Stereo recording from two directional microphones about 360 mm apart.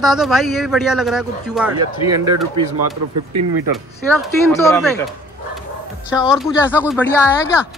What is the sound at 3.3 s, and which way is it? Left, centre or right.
Speech, right.